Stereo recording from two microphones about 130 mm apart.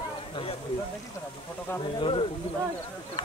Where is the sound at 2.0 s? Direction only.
40° left (ahead or behind).